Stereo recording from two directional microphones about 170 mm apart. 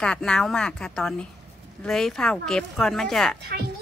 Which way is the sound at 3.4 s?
70° right (ahead or behind).